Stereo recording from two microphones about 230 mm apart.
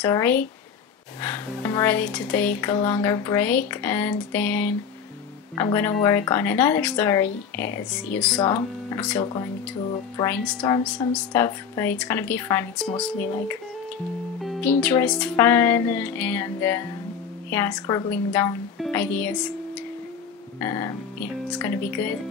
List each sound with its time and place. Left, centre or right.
0.0 s speech: centre
8.4 s speech: centre
10.1 s speech: centre
10.6 s speech: left
14.4 s speech: centre
20.6 s speech: centre